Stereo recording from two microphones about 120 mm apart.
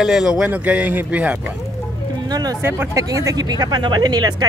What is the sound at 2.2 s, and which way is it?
Speech, 35° right (ahead or behind).